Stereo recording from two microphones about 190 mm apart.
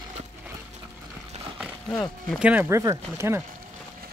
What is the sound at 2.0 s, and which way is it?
Speech, centre (ahead or behind).